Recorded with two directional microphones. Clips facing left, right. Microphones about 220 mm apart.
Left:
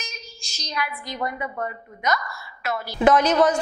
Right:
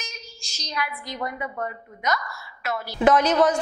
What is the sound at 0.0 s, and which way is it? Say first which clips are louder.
A woman's voice: left 1 dB; 10° left (ahead or behind).